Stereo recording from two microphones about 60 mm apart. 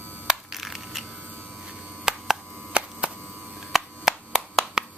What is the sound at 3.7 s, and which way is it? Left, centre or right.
Clapping, centre.